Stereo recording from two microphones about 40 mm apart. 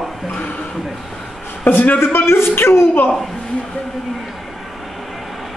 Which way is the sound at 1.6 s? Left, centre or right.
Left.